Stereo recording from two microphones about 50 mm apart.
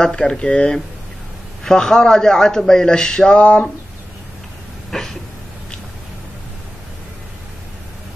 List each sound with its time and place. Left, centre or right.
0.0 s a man's voice: centre
3.3 s speech: left
4.9 s a man's voice: centre